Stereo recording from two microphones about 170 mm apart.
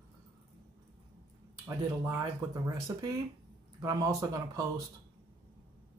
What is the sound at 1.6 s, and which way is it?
Speech, 15° right (ahead or behind).